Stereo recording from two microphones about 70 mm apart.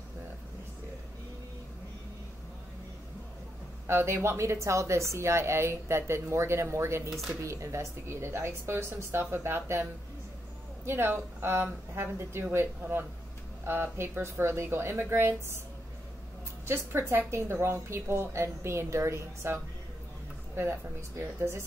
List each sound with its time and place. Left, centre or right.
3.8 s a woman's voice: right
7.1 s speech: centre
7.4 s a woman's voice: right
10.9 s a woman's voice: right
16.6 s a woman's voice: right
21.2 s a woman's voice: right